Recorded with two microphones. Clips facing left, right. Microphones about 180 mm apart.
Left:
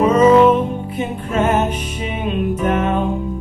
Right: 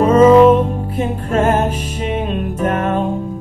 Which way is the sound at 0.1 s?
45° right (ahead or behind).